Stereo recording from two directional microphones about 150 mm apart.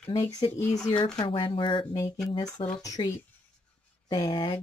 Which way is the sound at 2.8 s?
25° left (ahead or behind).